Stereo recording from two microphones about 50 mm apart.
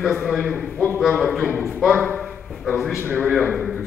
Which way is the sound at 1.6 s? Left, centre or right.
Centre.